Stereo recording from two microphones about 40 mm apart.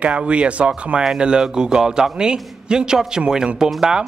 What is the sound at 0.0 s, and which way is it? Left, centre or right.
A man's voice, right.